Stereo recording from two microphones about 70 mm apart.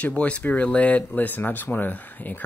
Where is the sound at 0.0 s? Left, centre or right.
Centre.